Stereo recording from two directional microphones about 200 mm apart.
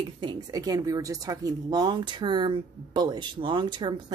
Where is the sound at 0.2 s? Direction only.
20° right (ahead or behind).